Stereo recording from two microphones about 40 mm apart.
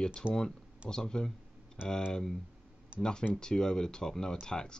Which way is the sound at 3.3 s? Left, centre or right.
Centre.